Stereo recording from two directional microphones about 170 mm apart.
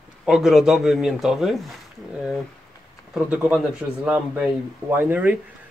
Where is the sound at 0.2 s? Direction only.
Centre (ahead or behind).